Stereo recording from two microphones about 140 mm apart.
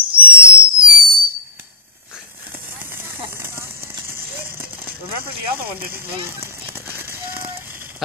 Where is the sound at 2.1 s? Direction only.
15° right (ahead or behind).